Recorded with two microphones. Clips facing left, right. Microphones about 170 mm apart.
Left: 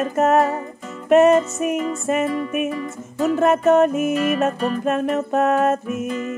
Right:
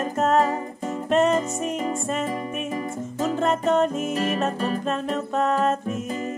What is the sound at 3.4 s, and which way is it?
Music, 10° left (ahead or behind).